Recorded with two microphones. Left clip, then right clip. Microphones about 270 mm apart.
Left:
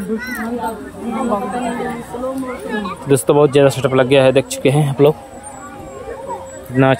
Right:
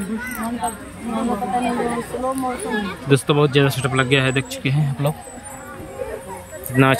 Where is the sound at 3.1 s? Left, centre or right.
Centre.